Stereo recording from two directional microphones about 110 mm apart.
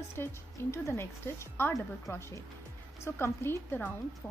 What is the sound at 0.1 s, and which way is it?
Speech, 25° left (ahead or behind).